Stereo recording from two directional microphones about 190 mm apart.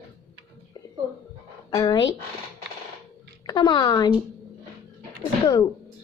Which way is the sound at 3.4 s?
25° left (ahead or behind).